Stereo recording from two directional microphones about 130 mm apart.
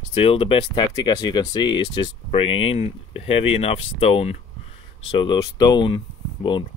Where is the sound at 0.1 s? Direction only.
50° left (ahead or behind).